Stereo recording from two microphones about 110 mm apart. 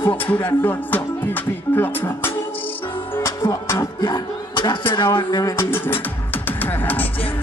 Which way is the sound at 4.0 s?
45° left (ahead or behind).